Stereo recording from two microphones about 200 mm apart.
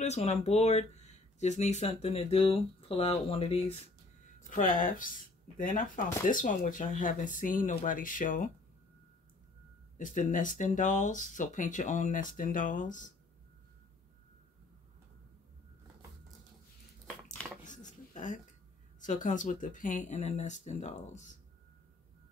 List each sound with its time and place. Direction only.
0.0 s speech: 35° left (ahead or behind)
4.5 s speech: 40° left (ahead or behind)
9.9 s speech: 40° left (ahead or behind)
17.6 s a sound: 40° left (ahead or behind)
18.9 s speech: 40° left (ahead or behind)